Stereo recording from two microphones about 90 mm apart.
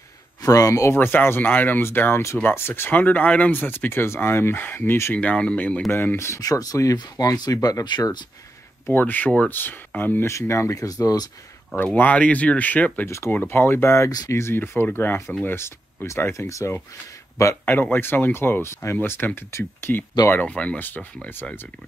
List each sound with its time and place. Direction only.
0.4 s speech: 40° left (ahead or behind)
0.9 s speech: 20° left (ahead or behind)
5.1 s speech: 15° left (ahead or behind)
5.9 s speech: 25° left (ahead or behind)
6.4 s speech: 40° left (ahead or behind)
8.8 s speech: 20° left (ahead or behind); by 11.2 s 40° left (ahead or behind)
11.7 s speech: 20° left (ahead or behind)
14.1 s speech: 45° left (ahead or behind)
14.4 s speech: 25° left (ahead or behind)